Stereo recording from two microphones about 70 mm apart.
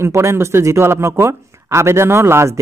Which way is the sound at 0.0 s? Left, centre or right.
Right.